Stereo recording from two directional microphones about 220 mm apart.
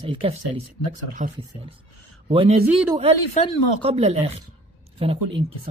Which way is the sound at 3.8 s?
30° right (ahead or behind).